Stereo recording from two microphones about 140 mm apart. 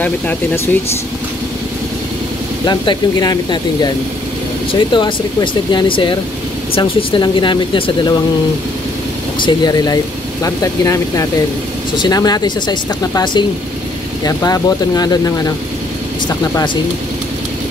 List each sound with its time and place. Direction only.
2.6 s speech: 30° left (ahead or behind)
9.4 s speech: 30° left (ahead or behind)